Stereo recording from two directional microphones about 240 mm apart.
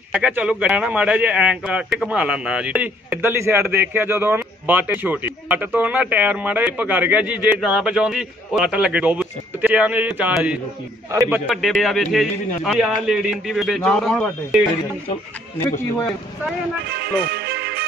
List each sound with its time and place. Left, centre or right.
0.1 s speech: centre
16.9 s music: right